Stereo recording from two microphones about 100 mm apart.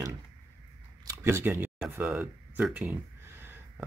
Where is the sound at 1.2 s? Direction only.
25° right (ahead or behind).